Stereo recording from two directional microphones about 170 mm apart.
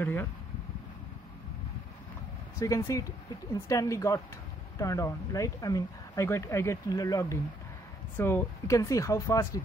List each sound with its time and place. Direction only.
0.0 s speech: 15° left (ahead or behind)
2.6 s speech: 20° left (ahead or behind)